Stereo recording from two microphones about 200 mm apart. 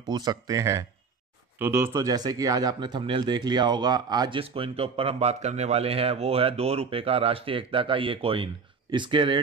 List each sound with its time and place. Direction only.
0.0 s speech: 20° right (ahead or behind)